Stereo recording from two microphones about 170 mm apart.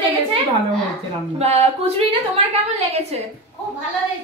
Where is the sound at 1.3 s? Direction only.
40° right (ahead or behind).